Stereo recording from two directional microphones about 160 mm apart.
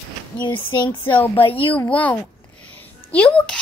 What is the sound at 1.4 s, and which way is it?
Speech, 35° left (ahead or behind).